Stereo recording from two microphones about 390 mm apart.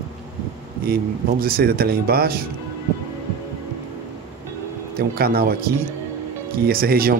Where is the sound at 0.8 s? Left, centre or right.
Right.